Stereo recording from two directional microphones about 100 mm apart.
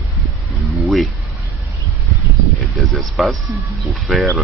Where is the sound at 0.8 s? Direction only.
Centre (ahead or behind).